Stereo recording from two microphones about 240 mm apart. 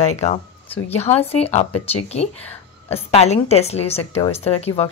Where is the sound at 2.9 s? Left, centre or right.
Left.